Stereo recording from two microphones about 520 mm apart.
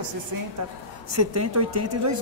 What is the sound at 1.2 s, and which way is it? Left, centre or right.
Speech, right.